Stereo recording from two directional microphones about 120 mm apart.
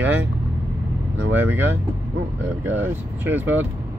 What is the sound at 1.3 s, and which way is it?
Speech, 15° right (ahead or behind).